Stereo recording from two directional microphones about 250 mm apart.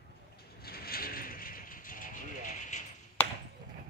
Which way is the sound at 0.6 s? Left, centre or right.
Left.